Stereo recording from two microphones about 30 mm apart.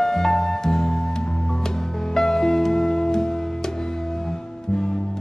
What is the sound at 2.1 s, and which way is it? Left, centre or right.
Music, centre.